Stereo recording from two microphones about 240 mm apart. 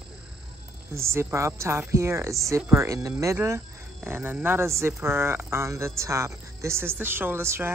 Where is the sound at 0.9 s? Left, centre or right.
Centre.